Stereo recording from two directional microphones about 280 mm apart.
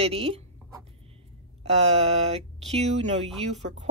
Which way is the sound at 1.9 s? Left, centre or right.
Right.